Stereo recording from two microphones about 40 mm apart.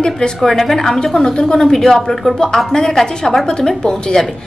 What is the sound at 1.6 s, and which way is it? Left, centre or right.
A woman's voice, centre.